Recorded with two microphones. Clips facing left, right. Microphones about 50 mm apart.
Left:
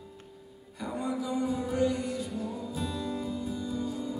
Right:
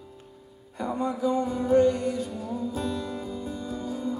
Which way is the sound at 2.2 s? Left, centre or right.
Centre.